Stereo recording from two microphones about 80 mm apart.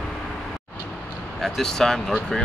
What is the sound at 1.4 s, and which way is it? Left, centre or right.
Speech, centre.